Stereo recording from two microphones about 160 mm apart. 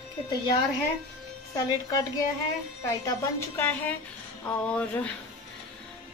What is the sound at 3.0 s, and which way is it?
A woman's voice, 15° left (ahead or behind).